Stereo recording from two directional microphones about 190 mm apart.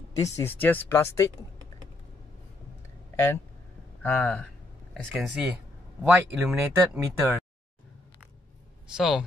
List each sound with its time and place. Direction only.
0.2 s speech: 10° left (ahead or behind)
4.0 s speech: 5° left (ahead or behind)
5.1 s speech: 5° right (ahead or behind)
8.8 s speech: 5° right (ahead or behind)